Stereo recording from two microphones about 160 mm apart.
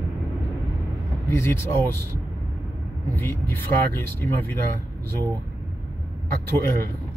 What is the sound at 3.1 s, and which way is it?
Speech, 10° left (ahead or behind).